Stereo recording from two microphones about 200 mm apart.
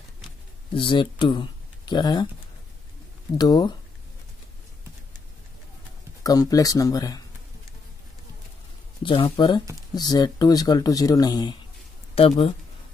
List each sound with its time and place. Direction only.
0.7 s speech: 25° left (ahead or behind)
3.3 s speech: 20° left (ahead or behind)
6.2 s speech: 20° left (ahead or behind)
9.0 s speech: 25° left (ahead or behind)